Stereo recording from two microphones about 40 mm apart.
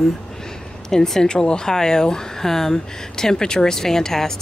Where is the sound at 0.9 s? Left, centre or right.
Centre.